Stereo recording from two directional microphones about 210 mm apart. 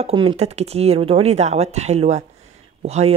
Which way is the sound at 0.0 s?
25° right (ahead or behind).